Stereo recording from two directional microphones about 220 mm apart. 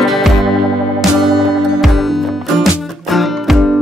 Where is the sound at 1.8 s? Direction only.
Centre (ahead or behind).